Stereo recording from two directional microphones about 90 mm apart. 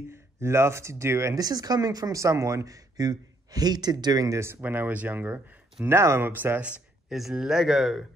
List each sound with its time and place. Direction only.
0.1 s speech: 30° right (ahead or behind)
7.1 s speech: 5° right (ahead or behind)